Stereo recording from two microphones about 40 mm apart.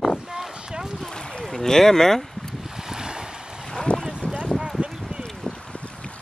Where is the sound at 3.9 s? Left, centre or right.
Left.